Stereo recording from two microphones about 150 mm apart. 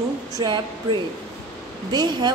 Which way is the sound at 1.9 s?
30° right (ahead or behind).